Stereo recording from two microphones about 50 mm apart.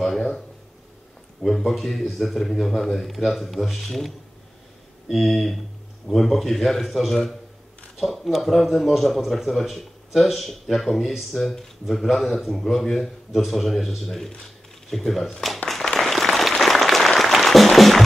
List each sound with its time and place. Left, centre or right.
0.0 s a sound: centre
1.4 s a man's voice: centre
15.9 s applause: centre